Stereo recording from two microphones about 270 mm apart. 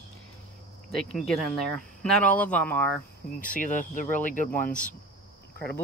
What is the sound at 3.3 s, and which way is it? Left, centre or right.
Speech, left.